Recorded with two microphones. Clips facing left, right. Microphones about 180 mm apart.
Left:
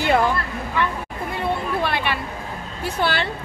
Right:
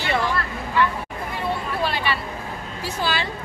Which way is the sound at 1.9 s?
60° left (ahead or behind).